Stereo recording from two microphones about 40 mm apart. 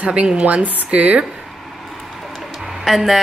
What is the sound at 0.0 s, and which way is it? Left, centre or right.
Speech, right.